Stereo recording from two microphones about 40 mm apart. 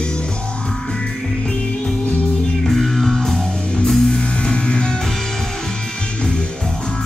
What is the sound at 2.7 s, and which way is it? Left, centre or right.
Music, centre.